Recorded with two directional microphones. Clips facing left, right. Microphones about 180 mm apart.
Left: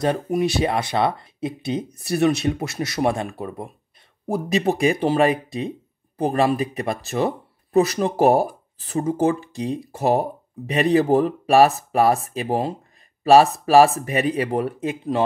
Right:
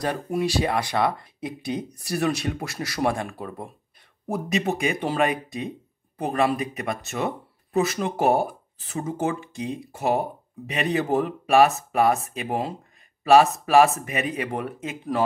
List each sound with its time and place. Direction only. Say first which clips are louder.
0.0 s speech: left 4 dB; 20° left (ahead or behind)
4.3 s speech: left 4 dB; 35° left (ahead or behind)